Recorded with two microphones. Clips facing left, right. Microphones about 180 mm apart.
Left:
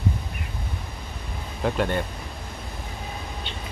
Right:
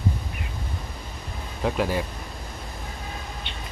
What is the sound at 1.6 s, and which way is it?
Speech, centre (ahead or behind).